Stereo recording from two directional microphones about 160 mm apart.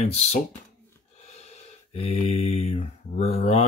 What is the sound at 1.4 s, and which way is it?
Mantra, 40° left (ahead or behind).